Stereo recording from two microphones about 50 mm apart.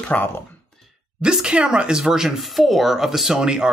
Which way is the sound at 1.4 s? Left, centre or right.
Centre.